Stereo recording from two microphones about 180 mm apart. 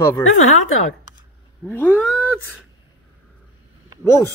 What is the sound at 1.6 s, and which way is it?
Cat, 15° left (ahead or behind).